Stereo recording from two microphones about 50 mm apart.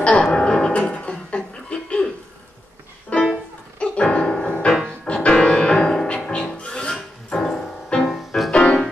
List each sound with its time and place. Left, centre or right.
0.2 s music: centre
3.1 s music: left